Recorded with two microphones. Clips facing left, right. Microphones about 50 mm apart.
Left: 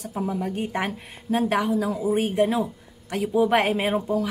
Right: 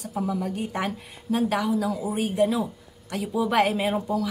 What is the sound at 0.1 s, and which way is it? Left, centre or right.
Speech, left.